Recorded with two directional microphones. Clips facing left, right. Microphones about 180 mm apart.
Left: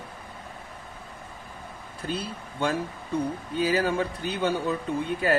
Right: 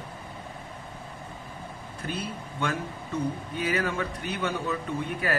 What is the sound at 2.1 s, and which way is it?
A man's voice, 30° left (ahead or behind).